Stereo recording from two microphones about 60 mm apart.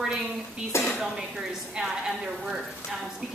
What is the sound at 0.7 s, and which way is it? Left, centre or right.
Speech, left.